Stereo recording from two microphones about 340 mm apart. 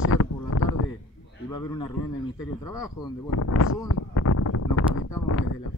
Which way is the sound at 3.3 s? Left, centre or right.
Left.